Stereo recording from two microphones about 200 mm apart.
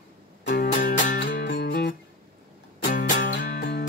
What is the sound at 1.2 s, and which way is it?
Music, 60° left (ahead or behind).